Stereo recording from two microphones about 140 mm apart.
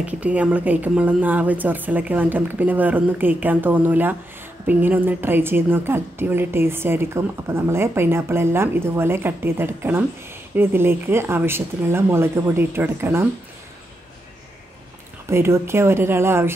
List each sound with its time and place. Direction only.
0.0 s a woman's voice: 10° right (ahead or behind)
15.2 s speech: 20° right (ahead or behind)